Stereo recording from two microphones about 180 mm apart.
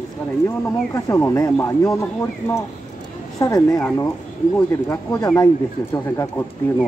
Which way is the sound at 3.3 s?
20° left (ahead or behind).